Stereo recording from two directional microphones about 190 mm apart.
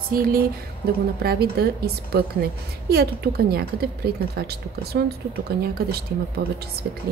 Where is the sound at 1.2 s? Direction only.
55° right (ahead or behind).